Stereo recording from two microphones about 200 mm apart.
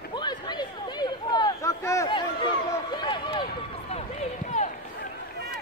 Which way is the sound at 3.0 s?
25° left (ahead or behind).